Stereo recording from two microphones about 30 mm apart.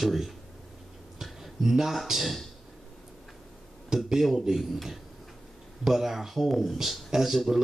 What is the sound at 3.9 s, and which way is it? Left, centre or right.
Speech, centre.